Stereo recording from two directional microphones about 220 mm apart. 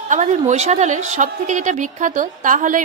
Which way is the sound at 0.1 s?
35° right (ahead or behind).